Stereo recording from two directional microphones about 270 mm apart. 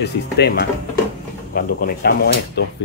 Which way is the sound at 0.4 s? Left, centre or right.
Left.